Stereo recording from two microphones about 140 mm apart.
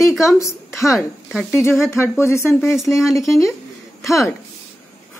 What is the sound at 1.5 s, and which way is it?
Speech, 15° left (ahead or behind).